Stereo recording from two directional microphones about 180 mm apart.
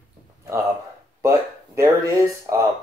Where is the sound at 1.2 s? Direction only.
15° right (ahead or behind).